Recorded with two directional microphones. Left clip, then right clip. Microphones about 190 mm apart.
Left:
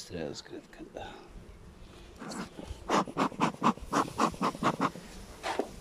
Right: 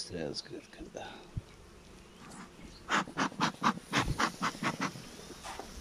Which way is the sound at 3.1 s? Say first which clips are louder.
Left 2 dB; 5° left (ahead or behind).